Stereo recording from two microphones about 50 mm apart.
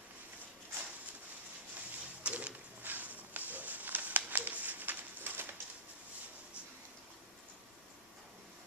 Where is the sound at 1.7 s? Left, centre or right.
Right.